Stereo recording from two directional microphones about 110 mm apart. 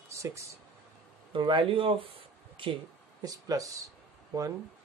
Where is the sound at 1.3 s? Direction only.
50° right (ahead or behind).